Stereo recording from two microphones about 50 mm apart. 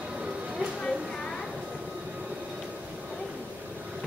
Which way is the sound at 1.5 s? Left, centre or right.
Centre.